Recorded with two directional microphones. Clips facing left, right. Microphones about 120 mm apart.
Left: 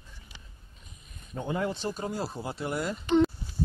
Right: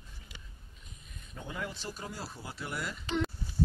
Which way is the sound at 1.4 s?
30° left (ahead or behind).